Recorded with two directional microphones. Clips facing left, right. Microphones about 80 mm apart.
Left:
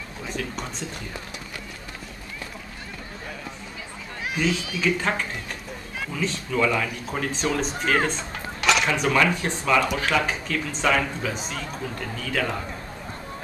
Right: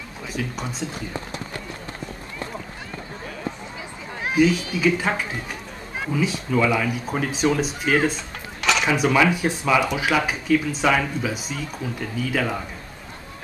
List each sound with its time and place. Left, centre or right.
0.6 s speech: centre
4.4 s speech: centre